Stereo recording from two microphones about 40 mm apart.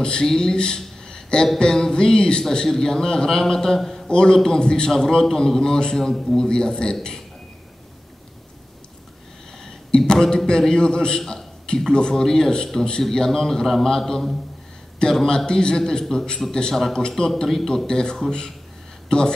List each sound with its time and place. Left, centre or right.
0.0 s a man's voice: centre
4.1 s a man's voice: left
5.9 s a man's voice: centre
6.2 s a man's voice: left
9.8 s a sound: centre
10.3 s a man's voice: left